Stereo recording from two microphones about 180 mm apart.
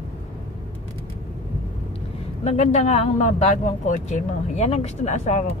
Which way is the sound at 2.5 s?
40° left (ahead or behind).